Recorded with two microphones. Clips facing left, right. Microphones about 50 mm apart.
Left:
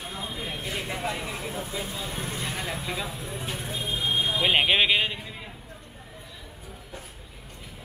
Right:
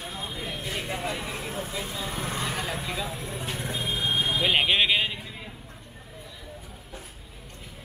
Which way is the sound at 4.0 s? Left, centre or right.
Right.